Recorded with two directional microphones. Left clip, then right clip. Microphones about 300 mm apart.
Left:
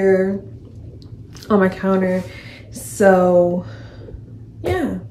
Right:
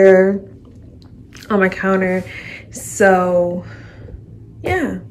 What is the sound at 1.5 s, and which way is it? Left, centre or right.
Speech, centre.